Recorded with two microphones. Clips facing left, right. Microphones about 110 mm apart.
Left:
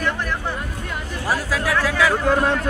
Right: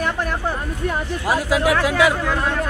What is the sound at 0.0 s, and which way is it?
Music, 45° right (ahead or behind).